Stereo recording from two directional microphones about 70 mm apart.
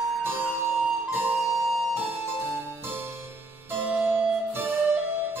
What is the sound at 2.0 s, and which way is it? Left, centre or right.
Harpsichord, right.